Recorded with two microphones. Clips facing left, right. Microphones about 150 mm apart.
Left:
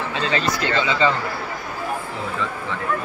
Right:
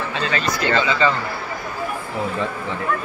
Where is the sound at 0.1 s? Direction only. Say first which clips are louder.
Left 2 dB; 25° left (ahead or behind).